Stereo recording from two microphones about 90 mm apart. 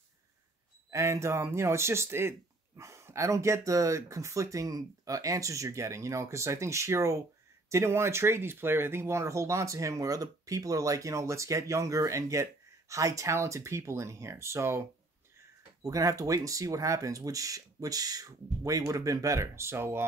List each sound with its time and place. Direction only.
0.8 s speech: 35° right (ahead or behind)
15.8 s speech: 40° right (ahead or behind)